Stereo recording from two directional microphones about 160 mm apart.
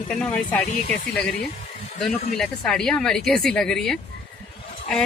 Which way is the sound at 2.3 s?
Centre (ahead or behind).